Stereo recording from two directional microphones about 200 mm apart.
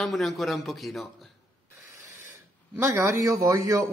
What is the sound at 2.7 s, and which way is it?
A man's voice, 15° right (ahead or behind).